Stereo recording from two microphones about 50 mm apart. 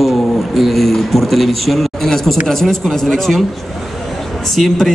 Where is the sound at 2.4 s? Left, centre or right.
Centre.